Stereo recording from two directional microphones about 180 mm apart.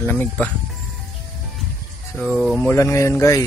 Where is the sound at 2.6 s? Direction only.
15° left (ahead or behind).